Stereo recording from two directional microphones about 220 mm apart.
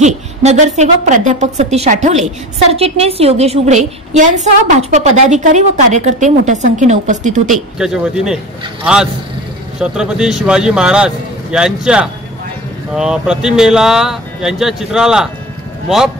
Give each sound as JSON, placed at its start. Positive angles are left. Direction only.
{"t": 0.0, "sound": "a woman's voice", "side_deg": -30}
{"t": 7.8, "sound": "speech", "side_deg": -5}